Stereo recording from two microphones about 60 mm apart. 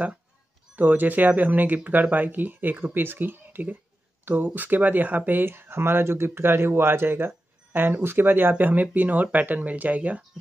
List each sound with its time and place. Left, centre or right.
0.7 s speech: right
4.2 s a sound: right
4.5 s speech: right